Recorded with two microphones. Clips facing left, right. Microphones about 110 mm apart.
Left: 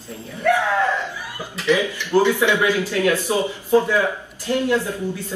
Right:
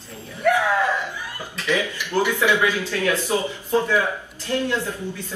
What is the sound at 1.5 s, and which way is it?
Speech, 15° left (ahead or behind).